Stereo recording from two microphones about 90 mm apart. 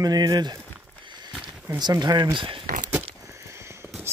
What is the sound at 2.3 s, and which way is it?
Speech, 65° right (ahead or behind).